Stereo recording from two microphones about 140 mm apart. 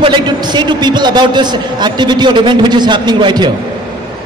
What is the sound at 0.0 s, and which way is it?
A man's voice, 35° right (ahead or behind).